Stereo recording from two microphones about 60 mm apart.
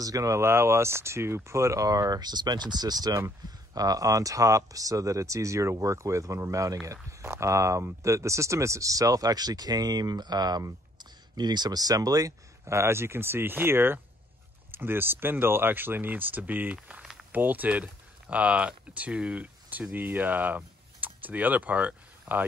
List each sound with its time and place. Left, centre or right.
0.0 s speech: right
0.3 s speech: right
3.2 s speech: right
6.8 s speech: right
11.7 s speech: right
12.6 s speech: right; by 19.4 s centre
19.7 s speech: right